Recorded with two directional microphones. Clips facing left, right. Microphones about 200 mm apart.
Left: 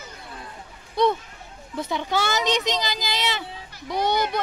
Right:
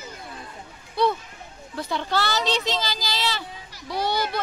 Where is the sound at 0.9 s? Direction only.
20° left (ahead or behind).